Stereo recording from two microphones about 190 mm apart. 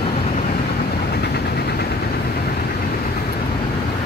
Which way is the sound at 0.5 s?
55° left (ahead or behind).